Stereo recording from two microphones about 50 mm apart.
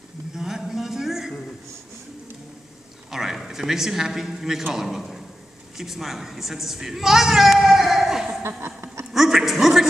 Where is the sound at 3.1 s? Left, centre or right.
Centre.